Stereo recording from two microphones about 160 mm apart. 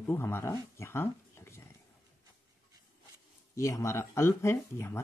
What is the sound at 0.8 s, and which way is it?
Dog, 15° left (ahead or behind).